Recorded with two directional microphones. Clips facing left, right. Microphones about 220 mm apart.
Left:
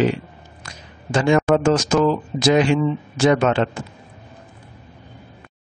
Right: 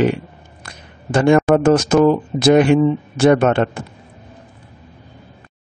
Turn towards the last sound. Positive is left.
turn(degrees=-55)  # may be behind; listen again after turning